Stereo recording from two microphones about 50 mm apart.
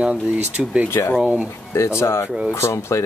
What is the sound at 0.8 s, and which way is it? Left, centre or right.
Speech, left.